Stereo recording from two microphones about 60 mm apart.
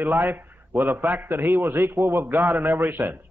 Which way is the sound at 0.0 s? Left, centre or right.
Right.